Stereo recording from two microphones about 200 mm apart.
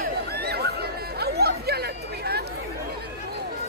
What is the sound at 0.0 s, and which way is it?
Chatter, 55° right (ahead or behind).